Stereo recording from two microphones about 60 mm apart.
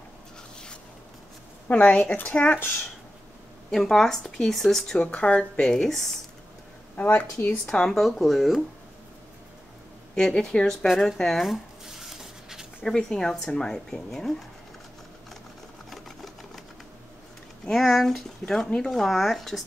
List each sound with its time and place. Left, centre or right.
1.7 s speech: left
2.4 s speech: left
3.7 s speech: centre
4.9 s speech: centre
7.0 s speech: left
7.6 s speech: centre
10.1 s speech: centre
10.9 s speech: centre
11.8 s a sound: centre
12.8 s speech: centre
15.9 s sewing machine: centre
17.6 s speech: centre